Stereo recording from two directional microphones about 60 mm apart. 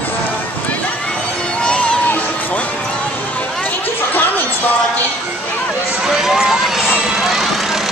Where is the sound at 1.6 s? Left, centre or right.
Centre.